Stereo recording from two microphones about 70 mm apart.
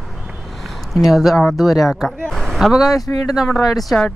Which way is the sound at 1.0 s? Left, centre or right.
Centre.